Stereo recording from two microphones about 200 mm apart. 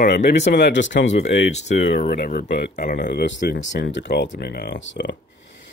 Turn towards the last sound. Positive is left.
turn(degrees=60)  # may be behind; listen again after turning